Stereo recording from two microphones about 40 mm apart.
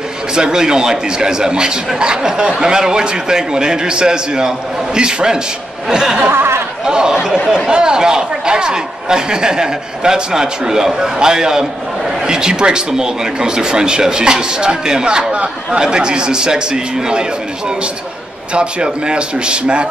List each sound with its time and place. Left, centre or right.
0.3 s speech: centre
6.3 s a sound: right
6.8 s speech: centre